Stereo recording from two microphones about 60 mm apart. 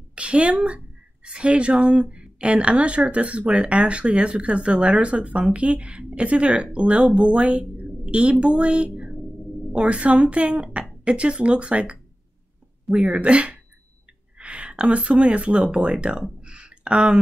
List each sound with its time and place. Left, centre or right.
0.1 s a woman's voice: centre